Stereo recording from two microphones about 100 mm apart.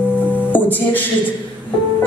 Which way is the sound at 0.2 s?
15° left (ahead or behind).